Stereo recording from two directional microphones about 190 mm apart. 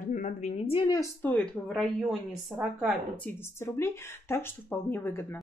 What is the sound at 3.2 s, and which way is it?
Speech, 15° left (ahead or behind).